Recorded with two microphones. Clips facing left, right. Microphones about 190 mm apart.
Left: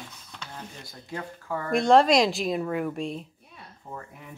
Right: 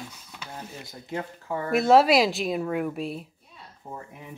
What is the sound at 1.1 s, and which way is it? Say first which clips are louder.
Speech: right 2 dB; 25° right (ahead or behind).